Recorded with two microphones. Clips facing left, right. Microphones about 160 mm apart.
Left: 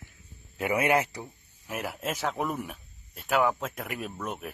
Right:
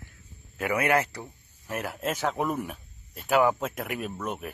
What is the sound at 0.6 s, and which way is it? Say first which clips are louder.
Speech: even; 20° left (ahead or behind).